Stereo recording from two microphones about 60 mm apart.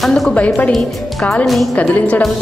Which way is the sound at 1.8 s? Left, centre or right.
Left.